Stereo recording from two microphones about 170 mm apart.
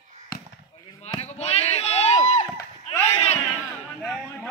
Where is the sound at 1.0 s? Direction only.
35° left (ahead or behind).